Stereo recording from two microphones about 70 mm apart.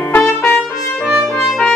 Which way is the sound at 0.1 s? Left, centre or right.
Left.